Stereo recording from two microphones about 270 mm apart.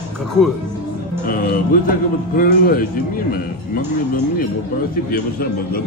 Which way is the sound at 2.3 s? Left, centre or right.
Left.